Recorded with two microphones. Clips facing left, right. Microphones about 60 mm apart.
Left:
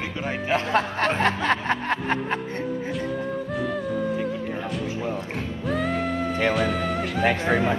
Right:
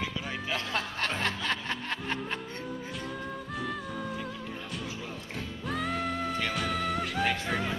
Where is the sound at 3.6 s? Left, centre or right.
Centre.